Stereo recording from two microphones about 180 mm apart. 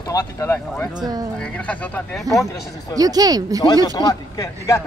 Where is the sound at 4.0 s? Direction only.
20° left (ahead or behind).